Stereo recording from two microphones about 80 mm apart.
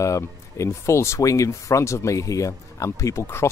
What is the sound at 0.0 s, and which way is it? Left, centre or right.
Speech, left.